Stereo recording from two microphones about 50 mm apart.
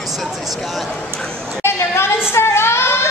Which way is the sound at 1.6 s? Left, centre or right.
Left.